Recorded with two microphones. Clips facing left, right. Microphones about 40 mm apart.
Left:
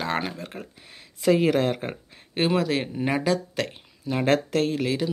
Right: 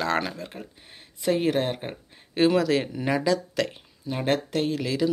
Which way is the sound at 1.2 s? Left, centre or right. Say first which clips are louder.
Left 3 dB; left.